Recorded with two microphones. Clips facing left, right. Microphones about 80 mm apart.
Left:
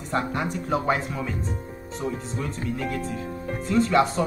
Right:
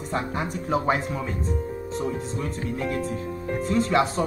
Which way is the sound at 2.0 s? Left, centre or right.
Right.